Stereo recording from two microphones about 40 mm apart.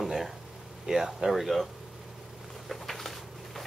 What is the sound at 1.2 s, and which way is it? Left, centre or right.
Speech, centre.